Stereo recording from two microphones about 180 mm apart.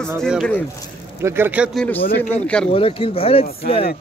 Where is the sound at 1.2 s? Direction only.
10° right (ahead or behind).